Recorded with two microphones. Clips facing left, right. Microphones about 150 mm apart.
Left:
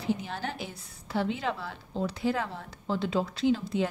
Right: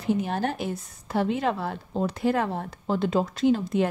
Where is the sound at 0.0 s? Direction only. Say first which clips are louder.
Right 6 dB; 50° right (ahead or behind).